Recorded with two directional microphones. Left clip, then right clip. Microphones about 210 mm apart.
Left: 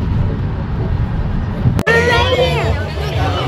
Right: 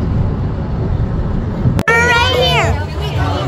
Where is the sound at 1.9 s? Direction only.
25° right (ahead or behind).